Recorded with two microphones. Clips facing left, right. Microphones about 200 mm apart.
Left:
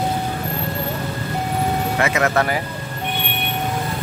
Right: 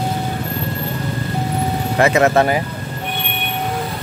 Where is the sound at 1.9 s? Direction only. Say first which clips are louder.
Right 8 dB; 35° right (ahead or behind).